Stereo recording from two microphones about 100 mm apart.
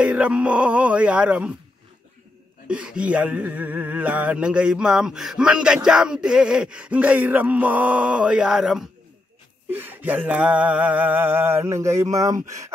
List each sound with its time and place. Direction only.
0.0 s speech: 10° right (ahead or behind)
2.7 s speech: 10° right (ahead or behind)
9.7 s a sound: 20° right (ahead or behind)